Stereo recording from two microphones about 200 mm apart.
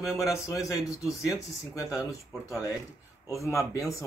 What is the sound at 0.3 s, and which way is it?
Speech, 15° left (ahead or behind).